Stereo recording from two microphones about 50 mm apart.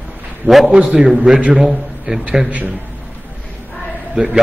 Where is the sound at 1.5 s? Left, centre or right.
Centre.